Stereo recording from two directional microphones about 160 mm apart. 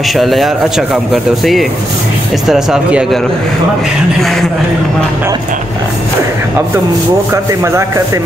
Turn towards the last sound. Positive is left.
turn(degrees=-15)  # may be behind; listen again after turning